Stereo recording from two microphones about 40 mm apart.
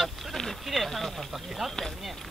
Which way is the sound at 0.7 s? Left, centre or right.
Centre.